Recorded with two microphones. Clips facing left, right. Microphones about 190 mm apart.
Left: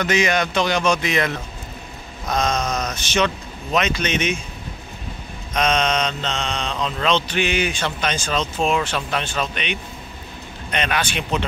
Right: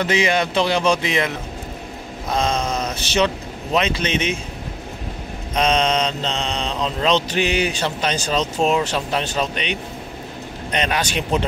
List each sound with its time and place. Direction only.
0.0 s speech: 30° right (ahead or behind)
3.7 s mantra: 30° right (ahead or behind)
5.5 s mantra: 30° right (ahead or behind)